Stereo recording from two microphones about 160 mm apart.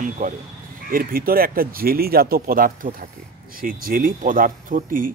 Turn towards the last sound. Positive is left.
turn(degrees=-60)  # may be behind; listen again after turning